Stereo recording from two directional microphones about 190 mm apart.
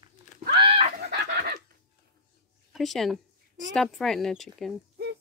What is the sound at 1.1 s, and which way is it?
Chicken, 55° right (ahead or behind).